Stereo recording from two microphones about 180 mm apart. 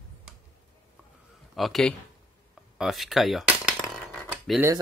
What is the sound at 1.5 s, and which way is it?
Speech, centre (ahead or behind).